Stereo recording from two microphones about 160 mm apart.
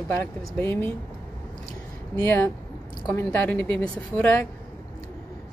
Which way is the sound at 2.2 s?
15° left (ahead or behind).